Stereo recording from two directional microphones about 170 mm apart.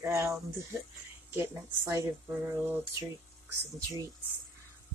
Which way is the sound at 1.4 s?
15° right (ahead or behind).